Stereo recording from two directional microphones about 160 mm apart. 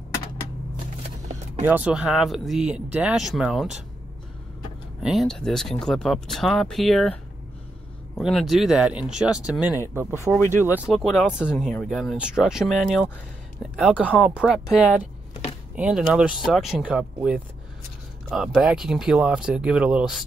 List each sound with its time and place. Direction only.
1.6 s speech: 10° right (ahead or behind)
5.0 s speech: centre (ahead or behind)
8.2 s speech: centre (ahead or behind)
10.4 s speech: 15° left (ahead or behind)
10.9 s speech: centre (ahead or behind)